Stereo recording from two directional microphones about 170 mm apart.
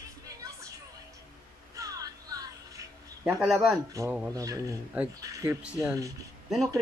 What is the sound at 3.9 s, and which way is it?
A man's voice, 20° right (ahead or behind).